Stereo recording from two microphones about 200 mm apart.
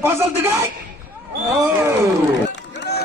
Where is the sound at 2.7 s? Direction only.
55° left (ahead or behind).